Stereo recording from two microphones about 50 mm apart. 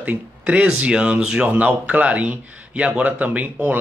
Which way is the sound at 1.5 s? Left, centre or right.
Right.